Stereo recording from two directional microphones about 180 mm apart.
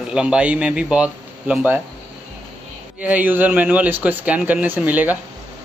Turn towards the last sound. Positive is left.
turn(degrees=-10)  # may be behind; listen again after turning